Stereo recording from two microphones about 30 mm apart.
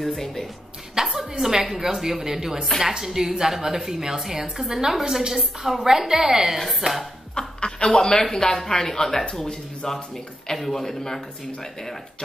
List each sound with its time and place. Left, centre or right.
0.0 s a woman's voice: centre
0.9 s a sound: centre
1.4 s a woman's voice: centre
6.8 s speech: right
7.3 s chuckle: left
8.1 s speech: centre